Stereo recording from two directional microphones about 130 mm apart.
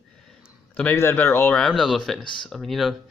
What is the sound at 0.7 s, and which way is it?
Speech, 15° left (ahead or behind).